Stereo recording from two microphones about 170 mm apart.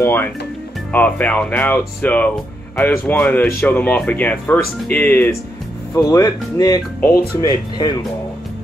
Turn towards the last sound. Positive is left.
turn(degrees=25)  # may be behind; listen again after turning